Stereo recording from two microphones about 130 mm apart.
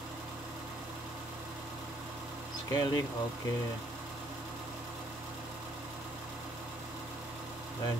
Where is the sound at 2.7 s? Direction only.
30° left (ahead or behind).